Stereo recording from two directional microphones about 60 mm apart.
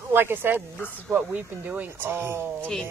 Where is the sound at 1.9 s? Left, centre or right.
Right.